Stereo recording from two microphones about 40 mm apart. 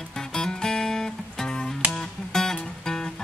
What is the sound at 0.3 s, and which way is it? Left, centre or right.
Music, centre.